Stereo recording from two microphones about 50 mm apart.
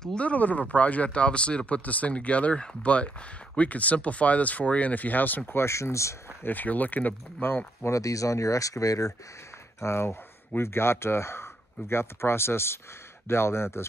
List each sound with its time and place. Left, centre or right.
0.2 s speech: left
5.5 s speech: left
6.4 s speech: left
7.4 s speech: left
7.9 s speech: left
9.8 s speech: left